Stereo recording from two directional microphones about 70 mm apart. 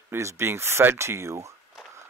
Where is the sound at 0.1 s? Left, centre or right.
Right.